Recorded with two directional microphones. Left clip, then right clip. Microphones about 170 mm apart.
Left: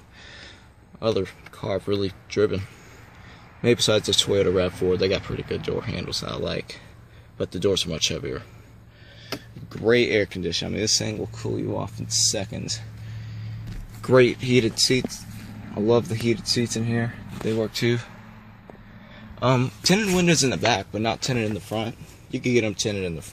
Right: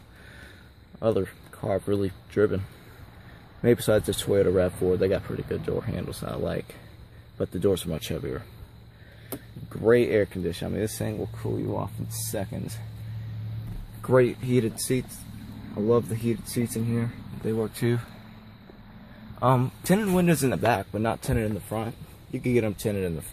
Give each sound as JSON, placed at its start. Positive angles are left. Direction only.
{"t": 0.9, "sound": "speech", "side_deg": 5}
{"t": 3.6, "sound": "speech", "side_deg": 5}
{"t": 9.7, "sound": "speech", "side_deg": 0}
{"t": 14.0, "sound": "speech", "side_deg": 20}
{"t": 17.6, "sound": "speech", "side_deg": 5}
{"t": 19.4, "sound": "speech", "side_deg": 5}
{"t": 21.4, "sound": "speech", "side_deg": 15}
{"t": 22.4, "sound": "speech", "side_deg": 0}